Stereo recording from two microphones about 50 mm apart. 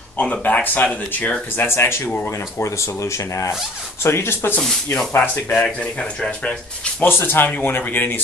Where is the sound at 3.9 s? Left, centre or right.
Left.